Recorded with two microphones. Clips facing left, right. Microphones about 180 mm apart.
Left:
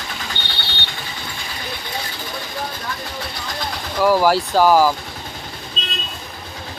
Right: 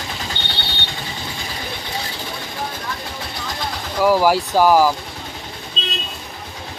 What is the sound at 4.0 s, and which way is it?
Speech, 10° right (ahead or behind).